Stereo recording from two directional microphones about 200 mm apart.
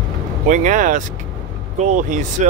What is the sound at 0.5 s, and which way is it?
Speech, 40° right (ahead or behind).